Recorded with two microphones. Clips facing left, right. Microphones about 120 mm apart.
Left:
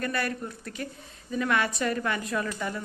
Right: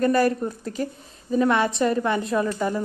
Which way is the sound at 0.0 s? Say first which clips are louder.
Right 11 dB; 35° right (ahead or behind).